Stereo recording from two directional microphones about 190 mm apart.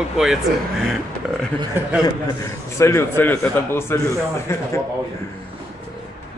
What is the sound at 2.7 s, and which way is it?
A man's voice, 15° left (ahead or behind).